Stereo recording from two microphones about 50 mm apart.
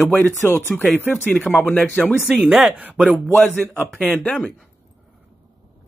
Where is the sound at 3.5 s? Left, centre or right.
Left.